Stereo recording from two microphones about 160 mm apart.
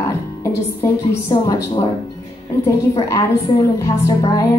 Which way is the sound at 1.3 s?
25° left (ahead or behind).